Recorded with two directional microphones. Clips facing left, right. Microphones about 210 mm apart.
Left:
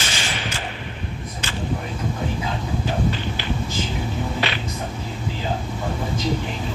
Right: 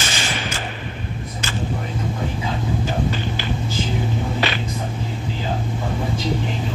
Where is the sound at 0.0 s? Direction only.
45° right (ahead or behind).